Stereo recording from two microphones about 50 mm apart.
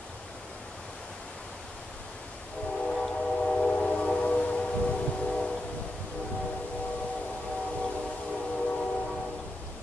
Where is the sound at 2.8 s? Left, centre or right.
Centre.